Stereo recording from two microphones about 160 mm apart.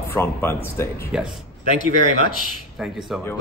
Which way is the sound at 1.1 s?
5° right (ahead or behind).